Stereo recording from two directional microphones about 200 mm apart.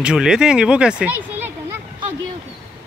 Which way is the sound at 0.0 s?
5° right (ahead or behind).